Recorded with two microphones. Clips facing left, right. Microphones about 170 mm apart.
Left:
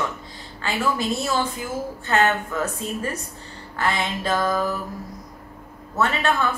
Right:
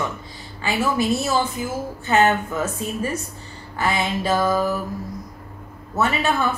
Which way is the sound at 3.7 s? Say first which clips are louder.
Right 2 dB; 5° right (ahead or behind).